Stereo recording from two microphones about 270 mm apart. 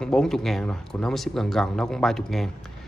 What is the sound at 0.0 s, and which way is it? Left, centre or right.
Speech, centre.